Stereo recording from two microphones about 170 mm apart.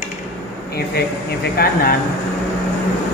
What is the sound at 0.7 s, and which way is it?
Speech, 70° left (ahead or behind).